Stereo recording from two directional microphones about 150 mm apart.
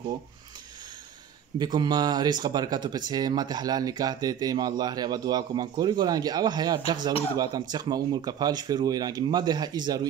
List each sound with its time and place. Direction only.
1.6 s speech: 30° right (ahead or behind)